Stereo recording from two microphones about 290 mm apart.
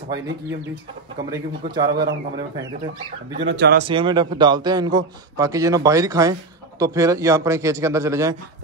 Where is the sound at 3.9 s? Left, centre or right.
Centre.